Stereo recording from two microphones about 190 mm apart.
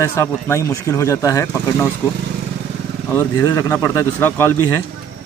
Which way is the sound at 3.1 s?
15° left (ahead or behind).